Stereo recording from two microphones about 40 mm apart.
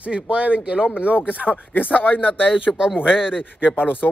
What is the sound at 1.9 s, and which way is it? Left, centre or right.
Speech, left.